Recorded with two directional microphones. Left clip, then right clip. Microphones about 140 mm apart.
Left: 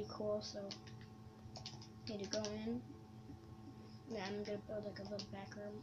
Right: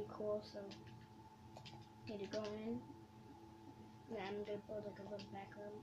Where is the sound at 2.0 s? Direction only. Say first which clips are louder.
Left 2 dB; 20° right (ahead or behind).